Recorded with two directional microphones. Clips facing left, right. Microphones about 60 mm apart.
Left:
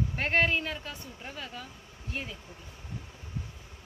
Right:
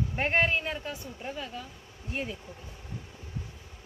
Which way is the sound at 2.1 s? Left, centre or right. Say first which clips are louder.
Right 3 dB; right.